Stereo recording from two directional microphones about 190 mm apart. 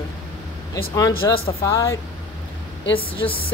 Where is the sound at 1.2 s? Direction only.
15° left (ahead or behind).